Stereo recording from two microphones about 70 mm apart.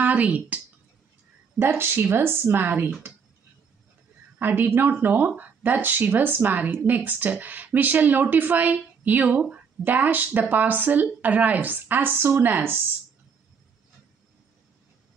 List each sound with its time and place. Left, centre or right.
0.0 s speech: right
1.6 s a woman's voice: right
4.4 s a woman's voice: right